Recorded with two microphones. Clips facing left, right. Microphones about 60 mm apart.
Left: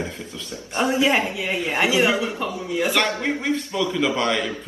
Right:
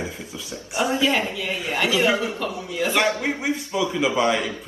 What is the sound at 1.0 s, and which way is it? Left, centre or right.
Speech, left.